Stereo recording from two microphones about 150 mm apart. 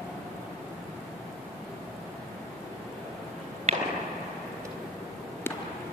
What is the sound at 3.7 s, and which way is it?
Arrow, 45° right (ahead or behind).